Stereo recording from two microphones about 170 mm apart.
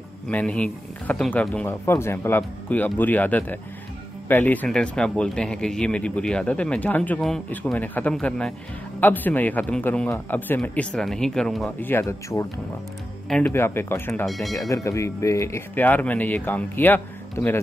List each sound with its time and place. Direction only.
0.3 s speech: 5° left (ahead or behind)
11.8 s speech: 15° left (ahead or behind)
14.2 s speech: centre (ahead or behind)
14.5 s speech: 20° left (ahead or behind)